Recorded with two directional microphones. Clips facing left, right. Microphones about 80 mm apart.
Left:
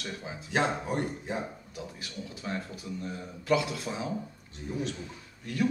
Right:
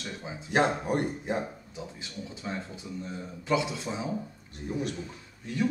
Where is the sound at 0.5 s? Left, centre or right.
Right.